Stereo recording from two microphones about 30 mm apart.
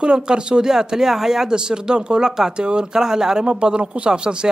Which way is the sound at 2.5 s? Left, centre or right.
Right.